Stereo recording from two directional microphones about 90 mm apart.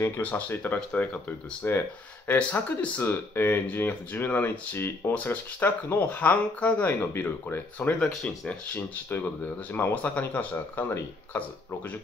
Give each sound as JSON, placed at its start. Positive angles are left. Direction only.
{"t": 0.0, "sound": "speech", "side_deg": 25}